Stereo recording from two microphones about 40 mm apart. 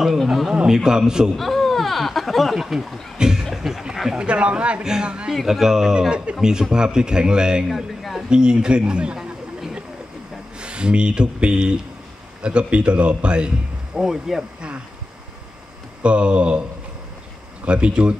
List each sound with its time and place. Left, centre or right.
0.6 s a man's voice: centre
1.3 s speech: centre
3.2 s a sound: centre
3.9 s dog: centre
4.2 s speech: right
5.3 s speech: centre
5.9 s speech: right
7.6 s a sound: centre
8.3 s speech: right
13.9 s speech: centre
16.0 s speech: right
17.6 s speech: right